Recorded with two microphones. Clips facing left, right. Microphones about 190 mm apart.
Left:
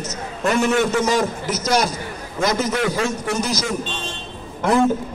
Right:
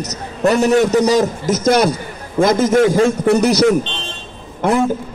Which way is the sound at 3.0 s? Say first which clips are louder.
Right 10 dB; 60° right (ahead or behind).